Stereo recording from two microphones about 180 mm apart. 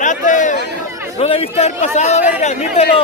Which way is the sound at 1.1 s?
30° left (ahead or behind).